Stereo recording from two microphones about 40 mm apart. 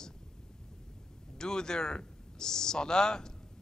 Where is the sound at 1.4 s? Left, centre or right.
Centre.